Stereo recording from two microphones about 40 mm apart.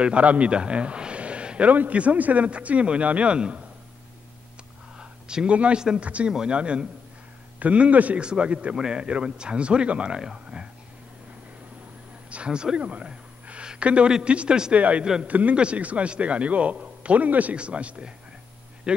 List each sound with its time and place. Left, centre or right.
0.0 s a man's voice: right
1.7 s speech: right
5.3 s speech: right
8.2 s speech: right
8.7 s a man's voice: centre
12.3 s speech: right
12.7 s a sound: right
14.2 s speech: right